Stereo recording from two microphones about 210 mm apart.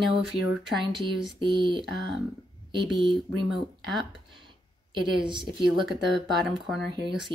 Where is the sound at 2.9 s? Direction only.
25° right (ahead or behind).